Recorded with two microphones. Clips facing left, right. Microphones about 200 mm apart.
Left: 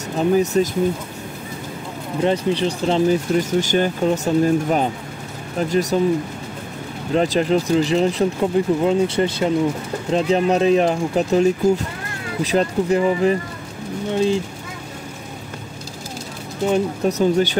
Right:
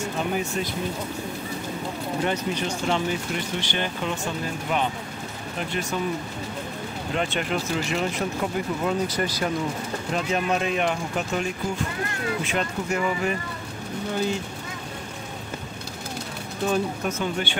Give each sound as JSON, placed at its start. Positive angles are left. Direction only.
{"t": 0.0, "sound": "speech", "side_deg": 40}
{"t": 2.2, "sound": "speech", "side_deg": 30}
{"t": 7.2, "sound": "speech", "side_deg": 35}
{"t": 12.4, "sound": "speech", "side_deg": 30}
{"t": 16.6, "sound": "speech", "side_deg": 20}
{"t": 17.1, "sound": "speech", "side_deg": 40}